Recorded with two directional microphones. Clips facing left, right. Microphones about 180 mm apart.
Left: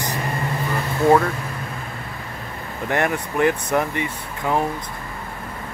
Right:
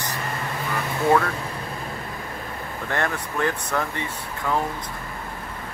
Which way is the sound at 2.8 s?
15° left (ahead or behind).